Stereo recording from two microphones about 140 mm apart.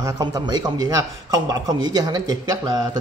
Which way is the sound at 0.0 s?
25° right (ahead or behind).